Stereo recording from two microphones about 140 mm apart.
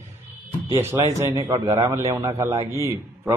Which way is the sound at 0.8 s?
15° right (ahead or behind).